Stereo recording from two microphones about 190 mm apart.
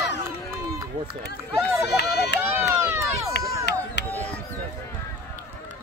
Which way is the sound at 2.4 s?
10° right (ahead or behind).